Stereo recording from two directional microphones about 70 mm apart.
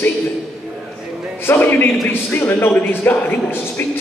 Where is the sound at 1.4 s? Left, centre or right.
Left.